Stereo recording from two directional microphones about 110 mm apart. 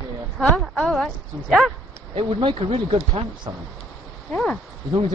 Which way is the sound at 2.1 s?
50° right (ahead or behind).